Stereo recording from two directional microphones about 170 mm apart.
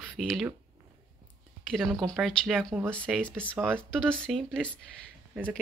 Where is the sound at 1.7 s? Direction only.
Centre (ahead or behind).